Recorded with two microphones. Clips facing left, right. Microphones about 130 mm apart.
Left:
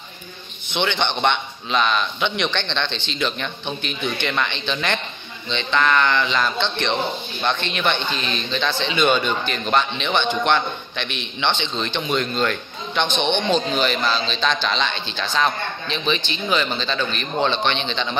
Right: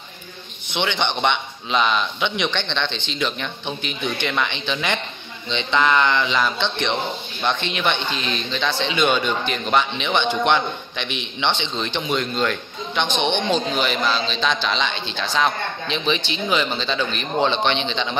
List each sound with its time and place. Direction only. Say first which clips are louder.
0.7 s a man's voice: left 1 dB; 10° right (ahead or behind)